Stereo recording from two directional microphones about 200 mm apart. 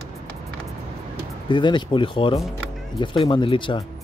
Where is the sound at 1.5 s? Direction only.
25° left (ahead or behind).